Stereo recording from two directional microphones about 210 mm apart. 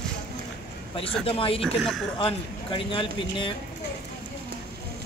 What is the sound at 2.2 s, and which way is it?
Speech, 25° left (ahead or behind).